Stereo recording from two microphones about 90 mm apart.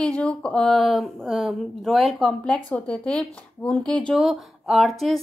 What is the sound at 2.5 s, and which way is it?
Speech, 15° left (ahead or behind).